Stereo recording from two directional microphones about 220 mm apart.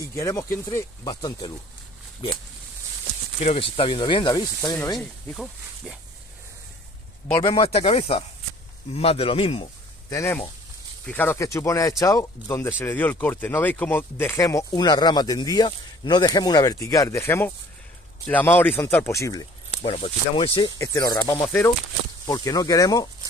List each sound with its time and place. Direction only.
0.0 s speech: 15° left (ahead or behind)
3.3 s speech: 25° left (ahead or behind)
4.9 s speech: centre (ahead or behind)
7.4 s a man's voice: 25° left (ahead or behind)
11.1 s speech: 10° left (ahead or behind)
19.8 s speech: 25° left (ahead or behind)